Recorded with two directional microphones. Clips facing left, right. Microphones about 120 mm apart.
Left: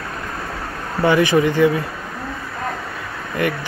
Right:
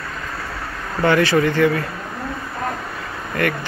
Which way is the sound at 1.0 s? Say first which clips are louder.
Left 1 dB; 15° left (ahead or behind).